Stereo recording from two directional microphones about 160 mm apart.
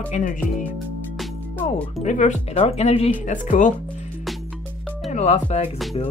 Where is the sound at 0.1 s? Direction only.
50° left (ahead or behind).